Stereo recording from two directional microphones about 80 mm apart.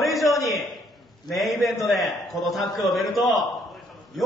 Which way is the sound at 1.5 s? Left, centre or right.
Left.